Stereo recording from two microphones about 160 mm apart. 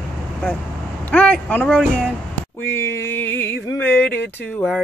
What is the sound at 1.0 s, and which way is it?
Speech, 5° left (ahead or behind).